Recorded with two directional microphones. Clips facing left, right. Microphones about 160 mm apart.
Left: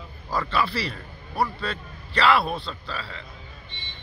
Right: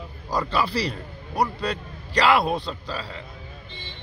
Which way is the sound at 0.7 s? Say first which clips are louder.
Right 4 dB; 40° right (ahead or behind).